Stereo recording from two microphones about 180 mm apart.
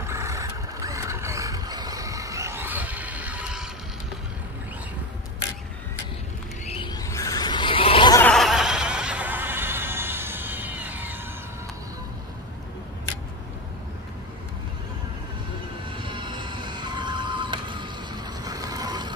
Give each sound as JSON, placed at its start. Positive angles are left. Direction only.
{"t": 0.0, "sound": "vehicle", "side_deg": -15}
{"t": 6.7, "sound": "a sound", "side_deg": 25}
{"t": 8.3, "sound": "music", "side_deg": 0}
{"t": 16.0, "sound": "music", "side_deg": -25}
{"t": 18.4, "sound": "vehicle", "side_deg": -20}